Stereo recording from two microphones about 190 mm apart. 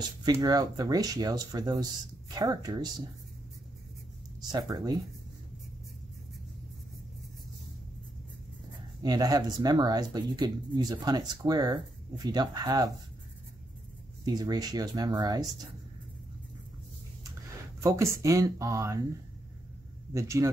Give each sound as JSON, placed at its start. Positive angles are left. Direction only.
{"t": 0.0, "sound": "speech", "side_deg": -20}
{"t": 4.5, "sound": "speech", "side_deg": -20}
{"t": 9.0, "sound": "speech", "side_deg": -20}
{"t": 14.2, "sound": "speech", "side_deg": -20}
{"t": 17.7, "sound": "speech", "side_deg": -15}
{"t": 20.1, "sound": "speech", "side_deg": -15}